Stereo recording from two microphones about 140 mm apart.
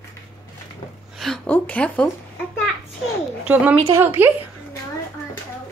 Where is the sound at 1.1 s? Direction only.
Centre (ahead or behind).